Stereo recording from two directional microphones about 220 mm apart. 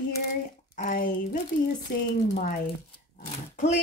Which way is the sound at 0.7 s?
35° left (ahead or behind).